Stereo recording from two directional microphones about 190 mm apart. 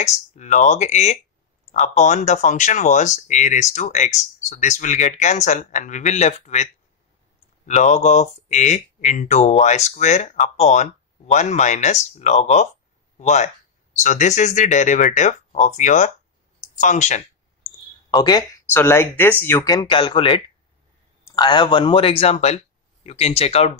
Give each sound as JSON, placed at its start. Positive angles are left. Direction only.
{"t": 0.0, "sound": "speech", "side_deg": 40}
{"t": 18.1, "sound": "speech", "side_deg": 20}